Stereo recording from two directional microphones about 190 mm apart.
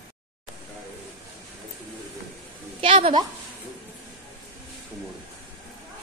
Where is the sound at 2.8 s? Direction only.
25° right (ahead or behind).